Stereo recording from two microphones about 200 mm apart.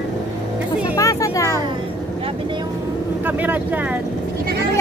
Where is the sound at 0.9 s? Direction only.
15° left (ahead or behind).